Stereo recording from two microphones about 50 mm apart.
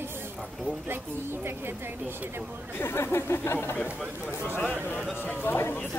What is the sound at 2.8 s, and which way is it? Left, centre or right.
Speech, left.